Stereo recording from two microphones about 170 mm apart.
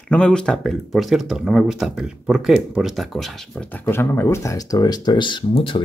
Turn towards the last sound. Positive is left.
turn(degrees=30)  # may be behind; listen again after turning